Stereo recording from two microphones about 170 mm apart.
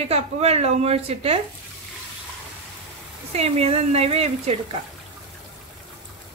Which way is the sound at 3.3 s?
35° right (ahead or behind).